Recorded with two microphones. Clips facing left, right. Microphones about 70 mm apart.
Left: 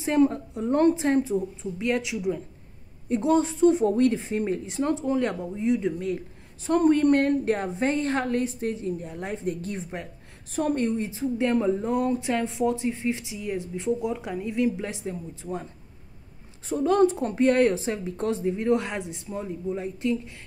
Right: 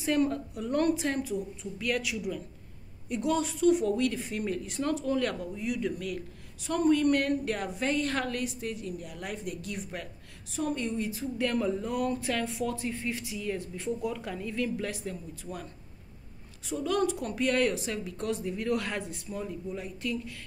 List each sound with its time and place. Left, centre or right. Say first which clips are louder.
0.0 s a woman's voice: left 5 dB; left
10.5 s a woman's voice: left 6 dB; left
16.6 s a woman's voice: left 8 dB; left